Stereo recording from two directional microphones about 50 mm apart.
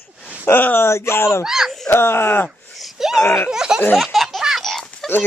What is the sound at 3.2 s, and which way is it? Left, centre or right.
Speech, left.